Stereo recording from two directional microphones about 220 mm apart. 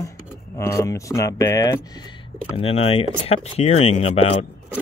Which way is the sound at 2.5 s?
25° left (ahead or behind).